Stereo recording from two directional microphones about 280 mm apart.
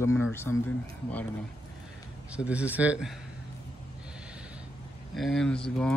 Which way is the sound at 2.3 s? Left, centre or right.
Centre.